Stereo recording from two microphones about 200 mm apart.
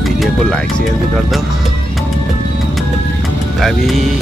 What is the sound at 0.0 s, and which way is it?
Speech, centre (ahead or behind).